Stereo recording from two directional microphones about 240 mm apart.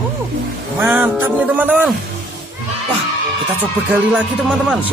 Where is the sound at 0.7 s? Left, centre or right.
Centre.